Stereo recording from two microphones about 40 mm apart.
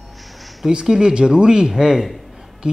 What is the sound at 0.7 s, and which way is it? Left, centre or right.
Speech, centre.